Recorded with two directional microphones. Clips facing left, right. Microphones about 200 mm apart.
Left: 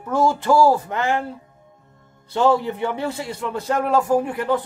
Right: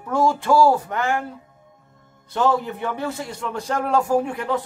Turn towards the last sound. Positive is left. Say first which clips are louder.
# left 2 dB
turn(degrees=5)  # may be behind; listen again after turning